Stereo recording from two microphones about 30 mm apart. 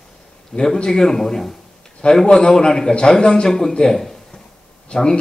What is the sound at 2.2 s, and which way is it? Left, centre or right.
A man's voice, left.